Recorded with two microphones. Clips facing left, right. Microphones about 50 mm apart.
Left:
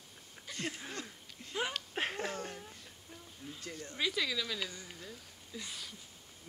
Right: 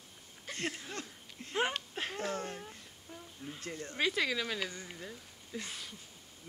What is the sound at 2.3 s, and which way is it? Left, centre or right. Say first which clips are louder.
Speech: right 3 dB; right.